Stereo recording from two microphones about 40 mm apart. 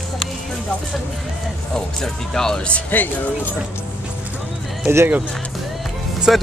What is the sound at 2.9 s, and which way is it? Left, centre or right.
Speech, left.